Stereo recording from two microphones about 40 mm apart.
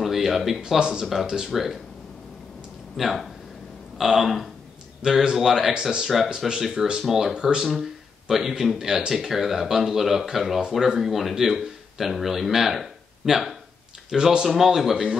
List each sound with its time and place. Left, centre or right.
0.0 s a sound: centre
0.6 s speech: centre
1.5 s speech: centre
3.0 s speech: centre
14.1 s speech: centre